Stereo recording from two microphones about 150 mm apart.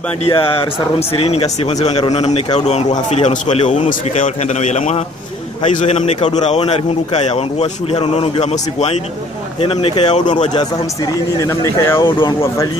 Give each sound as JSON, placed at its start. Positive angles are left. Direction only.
{"t": 0.2, "sound": "a man's voice", "side_deg": 35}
{"t": 11.3, "sound": "speech", "side_deg": 20}